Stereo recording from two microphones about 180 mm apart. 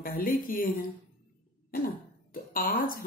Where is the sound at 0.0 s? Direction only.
50° left (ahead or behind).